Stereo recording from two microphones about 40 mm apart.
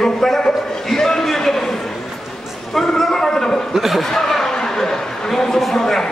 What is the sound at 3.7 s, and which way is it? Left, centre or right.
Speech, centre.